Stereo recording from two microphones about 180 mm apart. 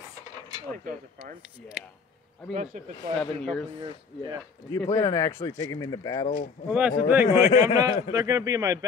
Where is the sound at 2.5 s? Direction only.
45° right (ahead or behind).